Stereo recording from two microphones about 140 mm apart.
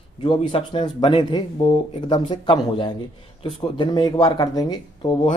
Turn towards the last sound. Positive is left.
turn(degrees=30)  # may be behind; listen again after turning